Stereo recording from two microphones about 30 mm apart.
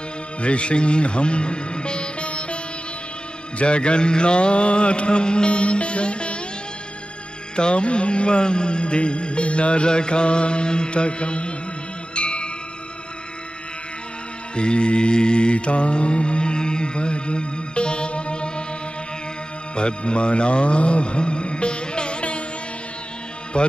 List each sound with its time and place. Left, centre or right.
0.4 s speech: left
3.5 s mantra: left
7.5 s mantra: left
12.2 s music: left
14.5 s mantra: left
19.7 s music: left
23.5 s mantra: left